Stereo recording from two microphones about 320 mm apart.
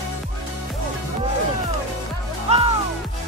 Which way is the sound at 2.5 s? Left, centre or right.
Centre.